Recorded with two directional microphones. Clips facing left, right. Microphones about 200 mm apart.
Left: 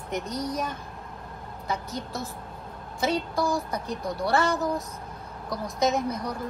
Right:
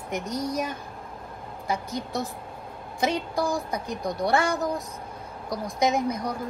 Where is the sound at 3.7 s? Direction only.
15° right (ahead or behind).